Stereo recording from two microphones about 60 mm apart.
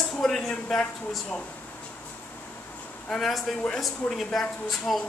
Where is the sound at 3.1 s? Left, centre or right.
Centre.